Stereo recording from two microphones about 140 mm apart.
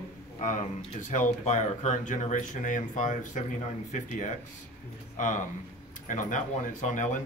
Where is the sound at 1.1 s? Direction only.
55° left (ahead or behind).